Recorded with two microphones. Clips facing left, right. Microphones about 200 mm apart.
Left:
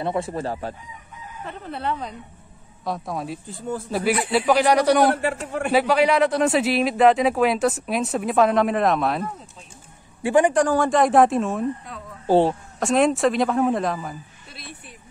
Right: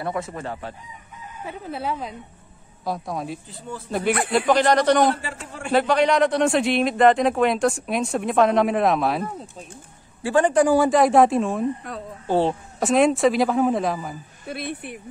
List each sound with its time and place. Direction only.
0.0 s chicken: 30° left (ahead or behind)
1.4 s a man's voice: 5° right (ahead or behind)
3.4 s speech: 45° left (ahead or behind)
4.3 s a man's voice: 5° left (ahead or behind)
10.2 s a man's voice: 15° left (ahead or behind)
10.5 s a man's voice: 5° right (ahead or behind)
14.5 s speech: 60° right (ahead or behind)